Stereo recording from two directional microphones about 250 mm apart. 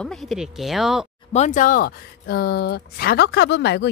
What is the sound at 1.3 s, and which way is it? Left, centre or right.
Speech, left.